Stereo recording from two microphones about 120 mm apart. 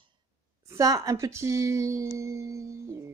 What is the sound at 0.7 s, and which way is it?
Speech, 30° right (ahead or behind).